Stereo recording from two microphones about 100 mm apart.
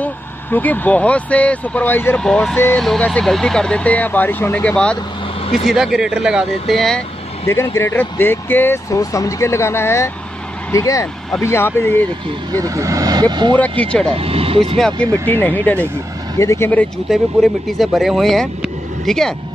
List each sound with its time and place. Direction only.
0.0 s speech: 15° left (ahead or behind)
2.2 s speech: 5° left (ahead or behind)
2.5 s speech: 20° left (ahead or behind)
2.8 s speech: centre (ahead or behind)
5.7 s speech: 5° right (ahead or behind)
7.4 s speech: 30° left (ahead or behind)
8.9 s speech: 35° left (ahead or behind)
12.5 s speech: 35° right (ahead or behind); by 13.6 s 50° right (ahead or behind)
13.6 s speech: 10° left (ahead or behind)
14.1 s speech: 75° right (ahead or behind)
14.8 s speech: 10° left (ahead or behind)
16.3 s speech: 25° left (ahead or behind)
17.1 s speech: centre (ahead or behind)